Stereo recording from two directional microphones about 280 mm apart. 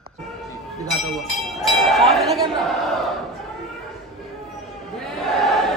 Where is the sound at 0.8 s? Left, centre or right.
Centre.